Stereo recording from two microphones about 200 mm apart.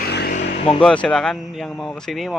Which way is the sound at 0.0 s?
50° left (ahead or behind).